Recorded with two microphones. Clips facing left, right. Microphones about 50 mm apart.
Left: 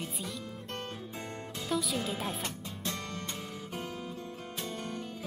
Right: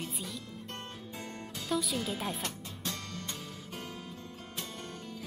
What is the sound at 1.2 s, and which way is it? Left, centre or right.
Music, left.